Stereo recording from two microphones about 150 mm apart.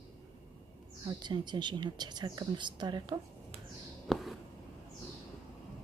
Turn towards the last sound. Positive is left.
turn(degrees=0)  # may be behind; listen again after turning